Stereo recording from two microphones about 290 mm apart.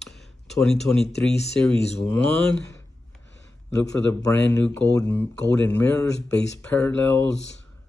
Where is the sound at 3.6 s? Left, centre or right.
Centre.